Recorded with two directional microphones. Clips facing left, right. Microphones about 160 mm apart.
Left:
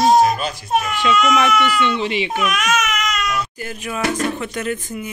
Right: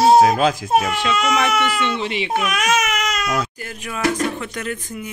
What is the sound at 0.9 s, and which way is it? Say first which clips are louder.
Speech: left 3 dB; 30° right (ahead or behind).